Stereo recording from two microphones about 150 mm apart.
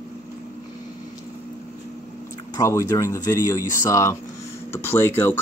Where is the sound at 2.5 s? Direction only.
20° left (ahead or behind).